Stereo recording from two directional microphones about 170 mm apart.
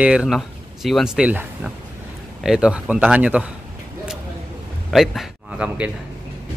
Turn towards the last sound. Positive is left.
turn(degrees=-5)  # may be behind; listen again after turning